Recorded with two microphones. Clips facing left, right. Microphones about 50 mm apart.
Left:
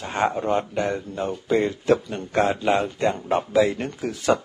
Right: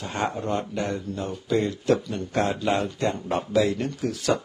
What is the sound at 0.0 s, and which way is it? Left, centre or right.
Speech, left.